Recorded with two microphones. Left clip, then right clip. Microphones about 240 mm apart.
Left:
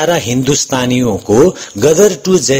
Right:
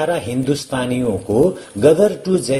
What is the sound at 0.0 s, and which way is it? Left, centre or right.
Speech, left.